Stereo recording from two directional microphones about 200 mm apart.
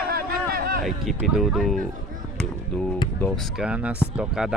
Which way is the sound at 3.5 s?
5° right (ahead or behind).